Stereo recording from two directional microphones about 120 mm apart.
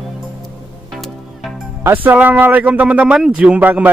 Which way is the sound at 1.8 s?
15° right (ahead or behind).